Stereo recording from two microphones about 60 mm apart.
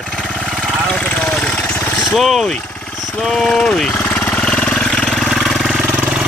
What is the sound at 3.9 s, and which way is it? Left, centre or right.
Jackhammer, left.